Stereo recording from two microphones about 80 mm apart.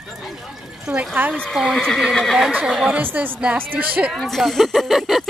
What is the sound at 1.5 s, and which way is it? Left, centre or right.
Speech, centre.